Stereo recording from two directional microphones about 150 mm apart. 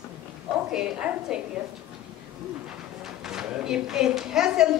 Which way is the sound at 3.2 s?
5° right (ahead or behind).